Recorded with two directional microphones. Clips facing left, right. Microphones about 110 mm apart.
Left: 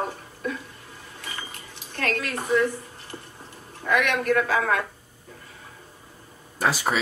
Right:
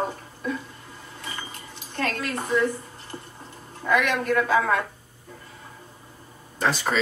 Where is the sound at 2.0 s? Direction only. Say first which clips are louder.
Even; 35° right (ahead or behind).